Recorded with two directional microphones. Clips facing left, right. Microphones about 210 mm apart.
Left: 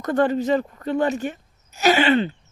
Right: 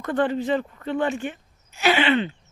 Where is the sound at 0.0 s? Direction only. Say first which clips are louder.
Left 3 dB; 40° left (ahead or behind).